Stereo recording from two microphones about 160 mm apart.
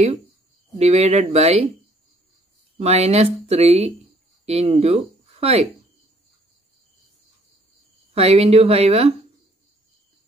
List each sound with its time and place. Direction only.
0.7 s speech: 40° right (ahead or behind)
2.8 s speech: 40° right (ahead or behind)
8.1 s speech: 40° right (ahead or behind)